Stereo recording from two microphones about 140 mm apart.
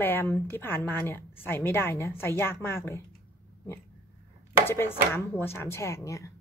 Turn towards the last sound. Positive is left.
turn(degrees=20)  # may be behind; listen again after turning